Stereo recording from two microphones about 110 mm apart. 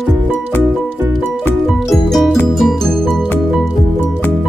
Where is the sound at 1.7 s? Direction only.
Centre (ahead or behind).